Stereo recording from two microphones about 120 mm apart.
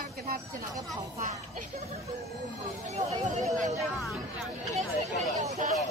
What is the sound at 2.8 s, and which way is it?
Speech, 70° right (ahead or behind).